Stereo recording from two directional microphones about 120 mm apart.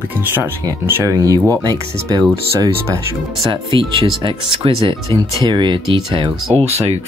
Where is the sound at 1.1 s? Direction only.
30° right (ahead or behind).